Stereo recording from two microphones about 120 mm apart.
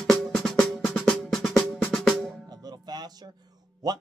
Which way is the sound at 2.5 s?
35° right (ahead or behind).